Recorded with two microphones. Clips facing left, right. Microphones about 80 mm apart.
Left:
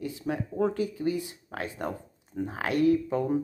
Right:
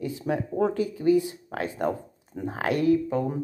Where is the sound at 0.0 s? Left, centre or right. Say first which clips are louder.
Right 4 dB; right.